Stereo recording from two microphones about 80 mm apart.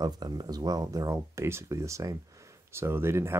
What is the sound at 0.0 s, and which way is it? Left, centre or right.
Speech, right.